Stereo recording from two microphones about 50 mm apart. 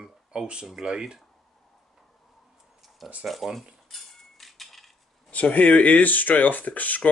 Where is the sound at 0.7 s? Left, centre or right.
Centre.